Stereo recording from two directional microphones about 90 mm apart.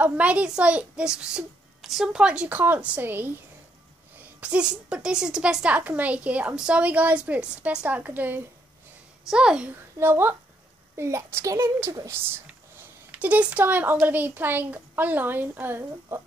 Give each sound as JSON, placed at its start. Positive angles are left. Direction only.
{"t": 0.0, "sound": "a woman's voice", "side_deg": -15}
{"t": 4.4, "sound": "a woman's voice", "side_deg": -10}
{"t": 9.3, "sound": "a woman's voice", "side_deg": -10}
{"t": 9.7, "sound": "a woman's voice", "side_deg": -25}
{"t": 13.2, "sound": "a woman's voice", "side_deg": -15}